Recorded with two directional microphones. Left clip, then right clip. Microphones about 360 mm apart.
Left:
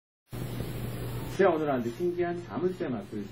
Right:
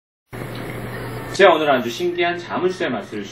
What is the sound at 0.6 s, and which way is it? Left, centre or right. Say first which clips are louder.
Vehicle: right 11 dB; right.